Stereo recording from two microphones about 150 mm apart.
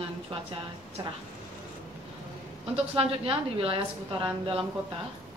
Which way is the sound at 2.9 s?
35° right (ahead or behind).